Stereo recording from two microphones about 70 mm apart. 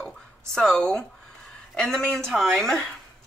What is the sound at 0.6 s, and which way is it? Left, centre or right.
Speech, centre.